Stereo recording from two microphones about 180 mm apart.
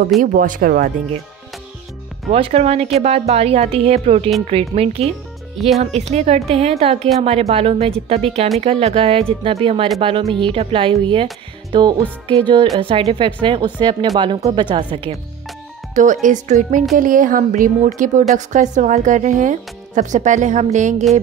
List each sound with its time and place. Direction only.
0.2 s speech: 50° right (ahead or behind)
2.3 s a woman's voice: 35° right (ahead or behind)
15.9 s speech: 45° right (ahead or behind)